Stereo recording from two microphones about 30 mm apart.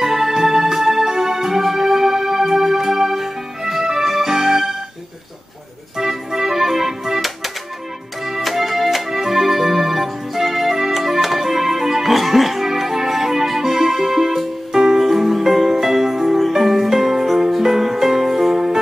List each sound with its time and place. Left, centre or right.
0.0 s music: centre
5.9 s music: centre
8.3 s music: centre
14.7 s music: centre
15.0 s music: centre